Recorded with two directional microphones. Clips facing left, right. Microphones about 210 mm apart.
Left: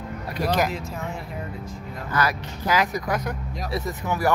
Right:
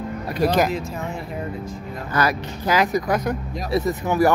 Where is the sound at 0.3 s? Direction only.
25° right (ahead or behind).